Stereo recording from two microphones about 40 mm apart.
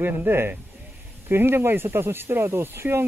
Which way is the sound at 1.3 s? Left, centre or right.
Right.